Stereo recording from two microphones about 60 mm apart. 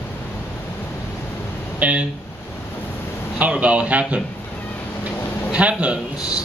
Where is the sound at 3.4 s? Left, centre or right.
Right.